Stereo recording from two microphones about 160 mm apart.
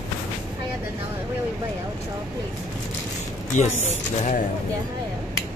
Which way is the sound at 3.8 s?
50° left (ahead or behind).